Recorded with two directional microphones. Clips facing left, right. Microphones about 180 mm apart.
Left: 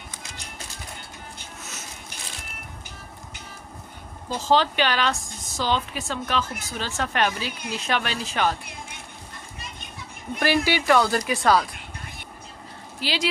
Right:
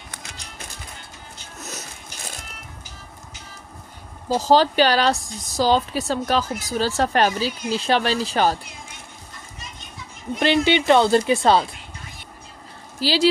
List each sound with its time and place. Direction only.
1.6 s a sound: 40° right (ahead or behind)
4.3 s speech: 40° right (ahead or behind)
10.4 s speech: 20° right (ahead or behind)
13.0 s speech: 35° right (ahead or behind)